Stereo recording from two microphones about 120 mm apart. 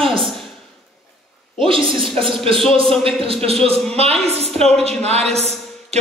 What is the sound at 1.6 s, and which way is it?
A woman's voice, 45° right (ahead or behind).